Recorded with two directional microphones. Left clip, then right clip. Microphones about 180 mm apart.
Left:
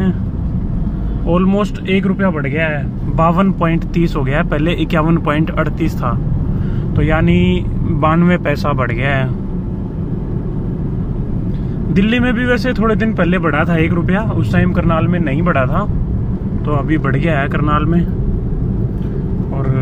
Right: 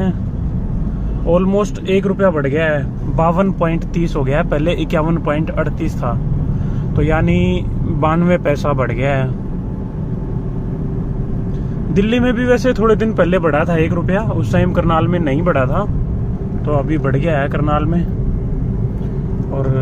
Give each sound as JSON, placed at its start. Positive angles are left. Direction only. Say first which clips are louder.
{"t": 1.3, "sound": "speech", "louder": "right 1 dB", "side_deg": -5}
{"t": 3.2, "sound": "speech", "louder": "left 1 dB", "side_deg": -5}
{"t": 11.9, "sound": "speech", "louder": "even", "side_deg": -5}